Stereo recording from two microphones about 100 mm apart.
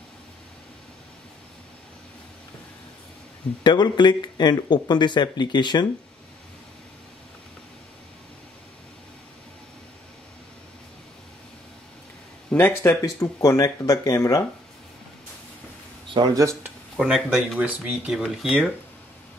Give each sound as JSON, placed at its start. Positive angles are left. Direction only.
{"t": 3.6, "sound": "speech", "side_deg": 45}
{"t": 12.5, "sound": "speech", "side_deg": 25}
{"t": 13.0, "sound": "speech", "side_deg": 35}
{"t": 16.1, "sound": "speech", "side_deg": -55}
{"t": 16.9, "sound": "speech", "side_deg": -5}